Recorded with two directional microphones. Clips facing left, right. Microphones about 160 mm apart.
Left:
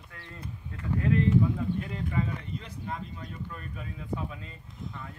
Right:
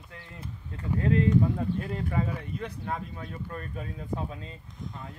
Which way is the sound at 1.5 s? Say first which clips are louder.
Right 1 dB; 45° right (ahead or behind).